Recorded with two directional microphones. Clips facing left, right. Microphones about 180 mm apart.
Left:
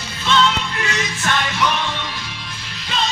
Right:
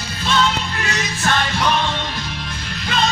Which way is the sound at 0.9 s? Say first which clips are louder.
Right 3 dB; 35° right (ahead or behind).